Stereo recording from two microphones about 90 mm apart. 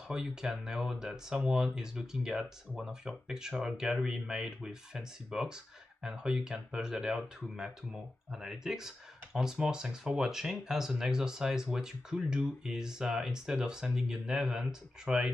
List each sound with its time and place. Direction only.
0.1 s speech: 5° right (ahead or behind)